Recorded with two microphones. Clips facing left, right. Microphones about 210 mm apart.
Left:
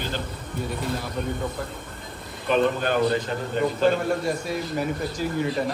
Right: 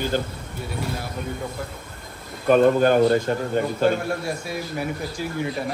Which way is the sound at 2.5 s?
45° right (ahead or behind).